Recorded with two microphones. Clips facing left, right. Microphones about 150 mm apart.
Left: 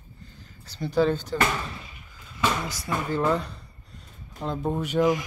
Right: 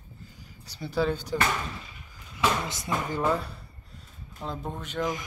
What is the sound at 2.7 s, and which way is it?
Speech, 20° right (ahead or behind).